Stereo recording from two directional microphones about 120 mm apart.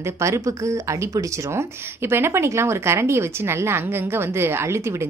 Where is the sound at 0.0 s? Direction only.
25° right (ahead or behind).